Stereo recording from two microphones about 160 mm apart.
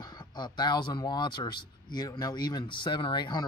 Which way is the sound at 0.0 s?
25° left (ahead or behind).